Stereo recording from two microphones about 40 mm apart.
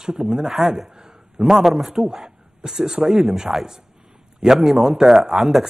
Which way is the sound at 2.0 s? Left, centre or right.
Centre.